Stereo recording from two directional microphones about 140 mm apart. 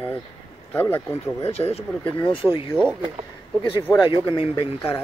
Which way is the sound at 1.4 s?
45° left (ahead or behind).